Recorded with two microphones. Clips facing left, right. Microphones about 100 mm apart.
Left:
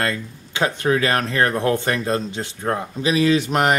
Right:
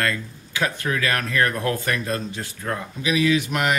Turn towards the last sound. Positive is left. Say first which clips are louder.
# left 4 dB
turn(degrees=35)  # may be behind; listen again after turning